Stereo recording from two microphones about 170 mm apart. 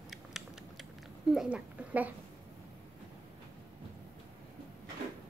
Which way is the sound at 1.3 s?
10° right (ahead or behind).